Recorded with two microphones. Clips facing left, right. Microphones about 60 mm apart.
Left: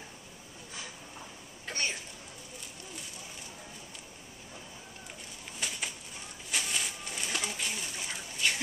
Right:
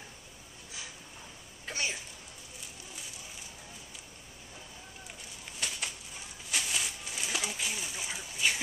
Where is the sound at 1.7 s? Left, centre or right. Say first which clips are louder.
Even; centre.